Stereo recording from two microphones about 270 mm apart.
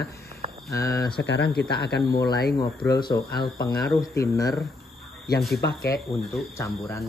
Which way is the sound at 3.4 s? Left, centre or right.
Centre.